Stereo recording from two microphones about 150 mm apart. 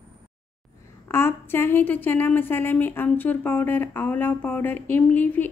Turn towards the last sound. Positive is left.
turn(degrees=10)  # may be behind; listen again after turning